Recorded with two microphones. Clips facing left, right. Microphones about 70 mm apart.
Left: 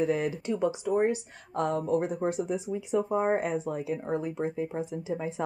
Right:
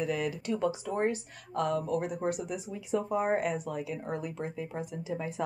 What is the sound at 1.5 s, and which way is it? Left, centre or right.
Speech, left.